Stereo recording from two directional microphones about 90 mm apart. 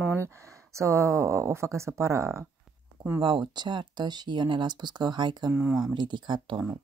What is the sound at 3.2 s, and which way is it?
Speech, 60° right (ahead or behind).